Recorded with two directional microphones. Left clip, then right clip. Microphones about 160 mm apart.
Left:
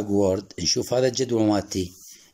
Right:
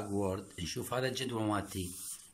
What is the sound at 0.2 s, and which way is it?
Speech, 35° left (ahead or behind).